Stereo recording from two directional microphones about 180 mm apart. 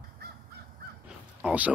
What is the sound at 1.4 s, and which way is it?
Speech, 10° right (ahead or behind).